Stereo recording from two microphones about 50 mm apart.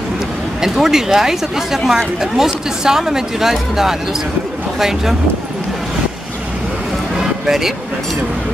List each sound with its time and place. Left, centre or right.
0.6 s speech: centre
7.4 s speech: centre